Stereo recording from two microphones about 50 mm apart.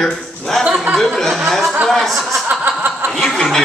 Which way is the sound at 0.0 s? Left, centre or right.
Centre.